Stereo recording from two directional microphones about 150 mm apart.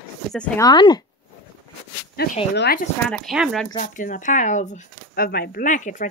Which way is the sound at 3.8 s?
60° left (ahead or behind).